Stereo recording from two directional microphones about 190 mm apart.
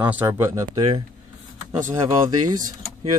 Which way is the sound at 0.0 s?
10° right (ahead or behind).